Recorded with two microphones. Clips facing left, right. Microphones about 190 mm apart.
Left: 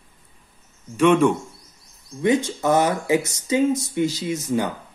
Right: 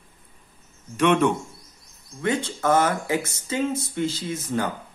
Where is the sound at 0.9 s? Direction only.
10° left (ahead or behind).